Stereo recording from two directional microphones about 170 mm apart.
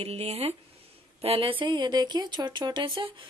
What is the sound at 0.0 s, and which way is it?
A woman's voice, 35° right (ahead or behind).